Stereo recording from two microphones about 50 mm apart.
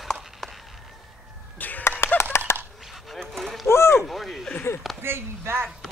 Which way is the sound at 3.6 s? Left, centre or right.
Left.